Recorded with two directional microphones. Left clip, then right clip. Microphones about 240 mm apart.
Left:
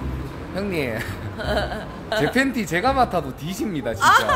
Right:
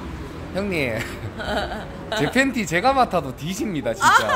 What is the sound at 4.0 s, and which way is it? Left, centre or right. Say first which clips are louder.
Speech: left 1 dB; centre.